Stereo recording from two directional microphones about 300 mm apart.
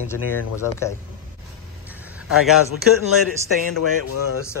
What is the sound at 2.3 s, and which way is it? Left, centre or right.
Speech, centre.